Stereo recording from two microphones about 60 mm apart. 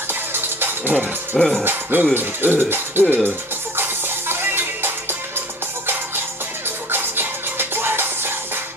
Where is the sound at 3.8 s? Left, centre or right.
Right.